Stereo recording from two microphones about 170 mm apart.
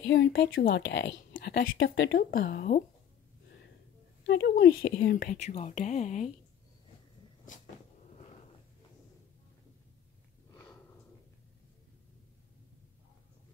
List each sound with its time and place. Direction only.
0.0 s a woman's voice: 90° left; by 2.8 s 60° left (ahead or behind)
4.3 s speech: 70° left (ahead or behind); by 6.3 s 45° left (ahead or behind)
10.5 s sniff: 15° left (ahead or behind)